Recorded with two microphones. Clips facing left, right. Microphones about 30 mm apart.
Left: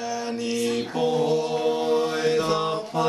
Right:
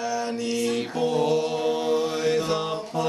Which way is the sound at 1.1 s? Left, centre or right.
Centre.